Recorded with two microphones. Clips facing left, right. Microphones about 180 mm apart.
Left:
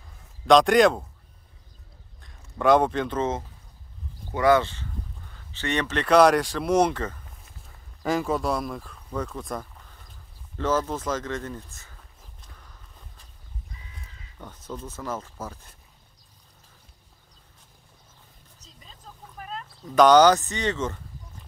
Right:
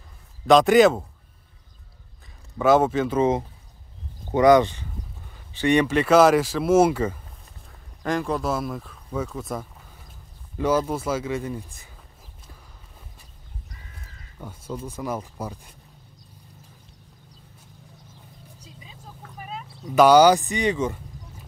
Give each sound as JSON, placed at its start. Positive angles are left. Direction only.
{"t": 0.5, "sound": "speech", "side_deg": -5}
{"t": 2.2, "sound": "speech", "side_deg": -5}
{"t": 8.0, "sound": "speech", "side_deg": 0}
{"t": 14.4, "sound": "speech", "side_deg": -10}
{"t": 18.6, "sound": "vehicle", "side_deg": -10}
{"t": 19.3, "sound": "speech", "side_deg": -5}